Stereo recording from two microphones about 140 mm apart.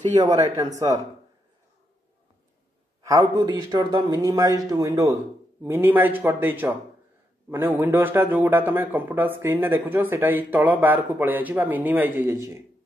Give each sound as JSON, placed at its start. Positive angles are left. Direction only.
{"t": 0.7, "sound": "speech", "side_deg": -25}
{"t": 3.0, "sound": "a man's voice", "side_deg": -25}